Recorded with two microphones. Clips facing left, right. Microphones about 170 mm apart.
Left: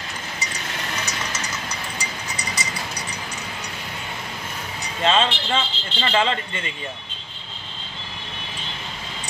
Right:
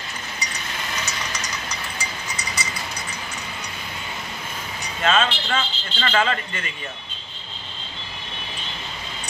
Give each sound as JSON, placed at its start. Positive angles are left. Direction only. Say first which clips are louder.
{"t": 5.0, "sound": "speech", "louder": "left 1 dB", "side_deg": 30}